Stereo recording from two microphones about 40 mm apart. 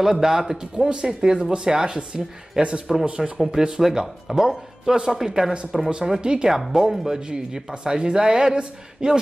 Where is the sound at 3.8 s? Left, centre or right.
Centre.